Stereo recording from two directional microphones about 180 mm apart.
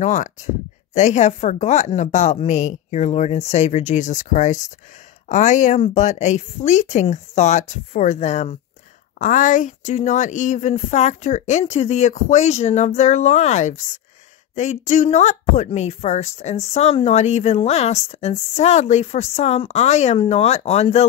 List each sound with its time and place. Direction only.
0.0 s speech: 40° left (ahead or behind)